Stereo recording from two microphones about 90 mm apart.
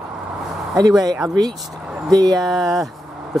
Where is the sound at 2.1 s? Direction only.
50° right (ahead or behind).